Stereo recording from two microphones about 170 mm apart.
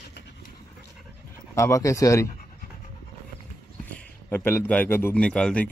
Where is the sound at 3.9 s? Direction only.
10° left (ahead or behind).